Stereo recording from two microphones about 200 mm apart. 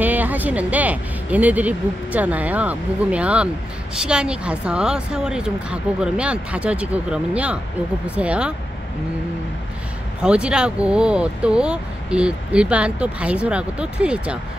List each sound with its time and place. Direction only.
0.0 s speech: 10° right (ahead or behind)
10.2 s speech: 5° right (ahead or behind)